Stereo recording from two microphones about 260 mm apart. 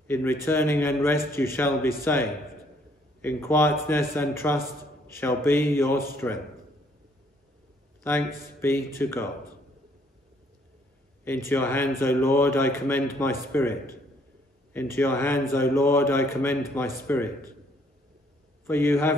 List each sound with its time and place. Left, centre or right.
0.0 s a man's voice: centre
8.0 s a man's voice: centre
11.2 s a man's voice: centre
18.7 s a man's voice: centre